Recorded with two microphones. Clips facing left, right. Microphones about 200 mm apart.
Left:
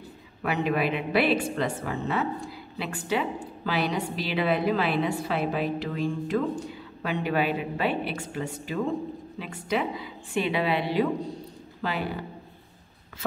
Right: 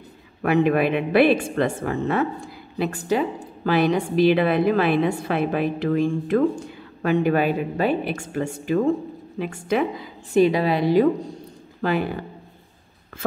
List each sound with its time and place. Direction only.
0.4 s a woman's voice: 50° right (ahead or behind)